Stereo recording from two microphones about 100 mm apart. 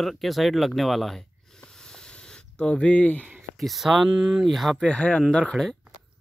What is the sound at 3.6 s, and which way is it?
Speech, centre (ahead or behind).